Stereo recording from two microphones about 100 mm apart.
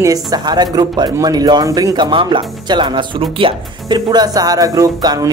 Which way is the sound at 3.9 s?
40° right (ahead or behind).